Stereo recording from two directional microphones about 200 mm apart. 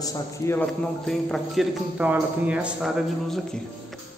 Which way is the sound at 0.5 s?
5° left (ahead or behind).